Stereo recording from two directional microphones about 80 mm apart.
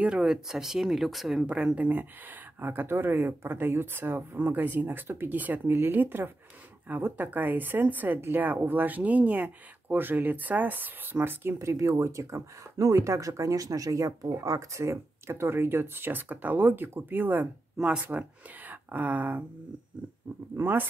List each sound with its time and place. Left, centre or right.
0.0 s speech: centre
1.9 s a woman's voice: right
11.5 s a woman's voice: right
17.7 s speech: centre
18.0 s speech: right
20.5 s a woman's voice: right